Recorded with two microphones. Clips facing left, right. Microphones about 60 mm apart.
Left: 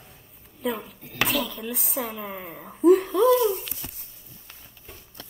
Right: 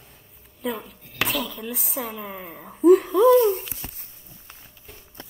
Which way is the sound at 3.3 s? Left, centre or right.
Right.